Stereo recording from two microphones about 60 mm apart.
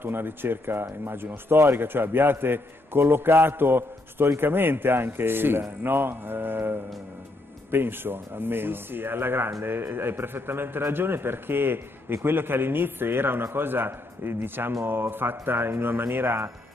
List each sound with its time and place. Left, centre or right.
0.0 s speech: right